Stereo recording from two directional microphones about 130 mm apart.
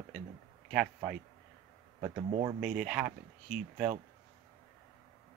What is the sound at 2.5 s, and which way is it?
Speech, 10° right (ahead or behind).